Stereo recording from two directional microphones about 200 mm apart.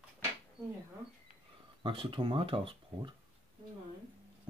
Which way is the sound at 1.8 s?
25° right (ahead or behind).